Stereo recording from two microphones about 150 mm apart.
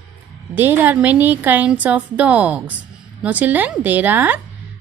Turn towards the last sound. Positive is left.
turn(degrees=-10)  # may be behind; listen again after turning